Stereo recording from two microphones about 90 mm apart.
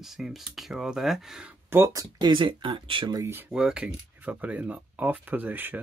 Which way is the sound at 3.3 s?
20° right (ahead or behind).